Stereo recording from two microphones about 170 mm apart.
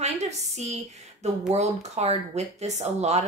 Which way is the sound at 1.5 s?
40° right (ahead or behind).